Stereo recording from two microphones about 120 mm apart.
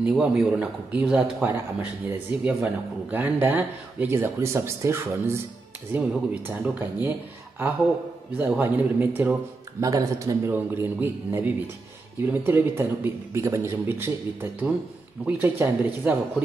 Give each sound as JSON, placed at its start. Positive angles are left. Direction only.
{"t": 0.0, "sound": "a man's voice", "side_deg": -5}
{"t": 5.9, "sound": "speech", "side_deg": -10}
{"t": 9.8, "sound": "a man's voice", "side_deg": -30}